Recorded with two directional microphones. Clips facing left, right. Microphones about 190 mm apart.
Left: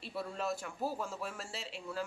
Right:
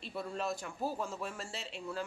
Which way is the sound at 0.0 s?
5° left (ahead or behind).